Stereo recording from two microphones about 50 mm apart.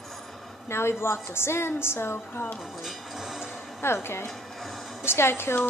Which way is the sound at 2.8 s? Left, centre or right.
Centre.